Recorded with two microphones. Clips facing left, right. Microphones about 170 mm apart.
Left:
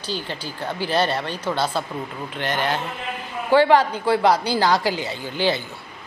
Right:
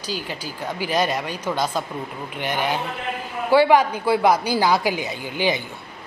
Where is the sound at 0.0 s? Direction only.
10° right (ahead or behind).